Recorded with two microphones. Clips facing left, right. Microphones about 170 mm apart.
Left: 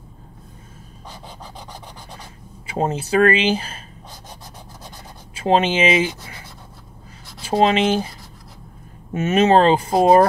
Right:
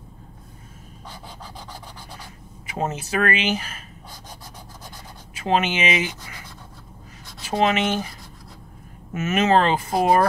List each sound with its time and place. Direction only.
1.0 s scratch: 15° left (ahead or behind)
2.6 s speech: 30° left (ahead or behind)
5.3 s speech: 30° left (ahead or behind)
7.4 s speech: 25° left (ahead or behind)